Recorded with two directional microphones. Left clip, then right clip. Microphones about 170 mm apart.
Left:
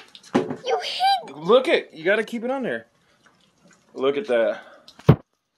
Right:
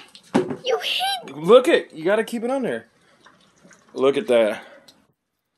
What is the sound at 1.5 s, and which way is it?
Speech, 50° right (ahead or behind).